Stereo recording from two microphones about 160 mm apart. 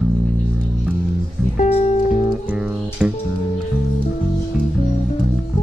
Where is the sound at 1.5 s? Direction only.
40° left (ahead or behind).